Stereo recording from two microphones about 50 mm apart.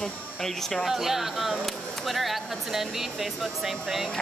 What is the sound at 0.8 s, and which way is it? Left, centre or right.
Speech, centre.